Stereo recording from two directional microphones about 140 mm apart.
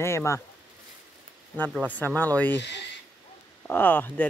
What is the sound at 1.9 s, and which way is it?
Speech, 15° left (ahead or behind).